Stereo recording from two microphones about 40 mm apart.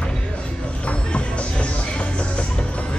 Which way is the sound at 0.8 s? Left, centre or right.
Left.